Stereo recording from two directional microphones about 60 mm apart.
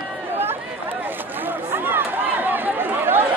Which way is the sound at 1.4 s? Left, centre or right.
Right.